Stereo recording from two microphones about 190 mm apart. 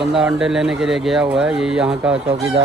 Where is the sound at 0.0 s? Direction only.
Centre (ahead or behind).